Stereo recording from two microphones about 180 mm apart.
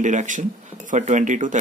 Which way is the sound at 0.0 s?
45° right (ahead or behind).